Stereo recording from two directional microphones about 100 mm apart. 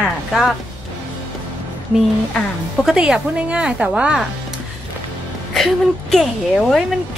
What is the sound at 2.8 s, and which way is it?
A woman's voice, 5° right (ahead or behind).